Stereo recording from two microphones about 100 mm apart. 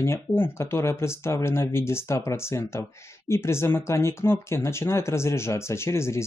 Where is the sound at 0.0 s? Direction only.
25° left (ahead or behind).